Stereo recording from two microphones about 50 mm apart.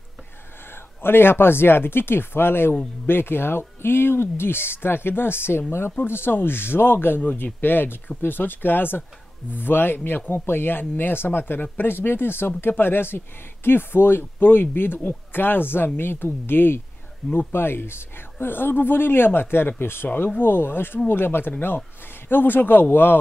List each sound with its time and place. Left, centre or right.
0.7 s speech: left